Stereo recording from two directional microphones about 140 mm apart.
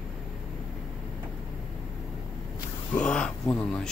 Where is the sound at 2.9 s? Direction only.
5° left (ahead or behind).